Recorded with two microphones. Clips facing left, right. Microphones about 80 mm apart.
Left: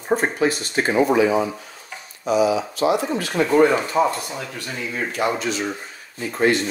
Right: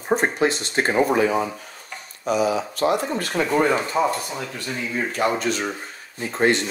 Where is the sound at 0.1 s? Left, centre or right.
Centre.